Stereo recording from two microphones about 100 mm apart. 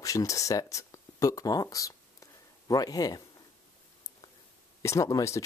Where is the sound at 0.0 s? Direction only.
35° left (ahead or behind).